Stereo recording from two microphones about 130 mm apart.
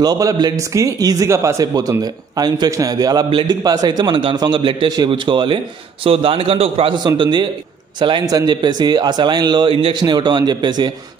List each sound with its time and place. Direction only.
0.0 s a man's voice: 30° right (ahead or behind)